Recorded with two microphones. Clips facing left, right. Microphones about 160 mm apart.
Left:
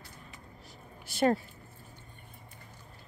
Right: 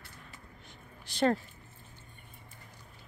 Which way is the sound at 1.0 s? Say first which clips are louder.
Left 1 dB; 10° left (ahead or behind).